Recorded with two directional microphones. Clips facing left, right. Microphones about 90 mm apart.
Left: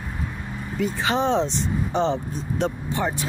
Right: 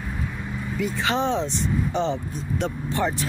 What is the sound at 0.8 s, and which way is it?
Speech, 30° left (ahead or behind).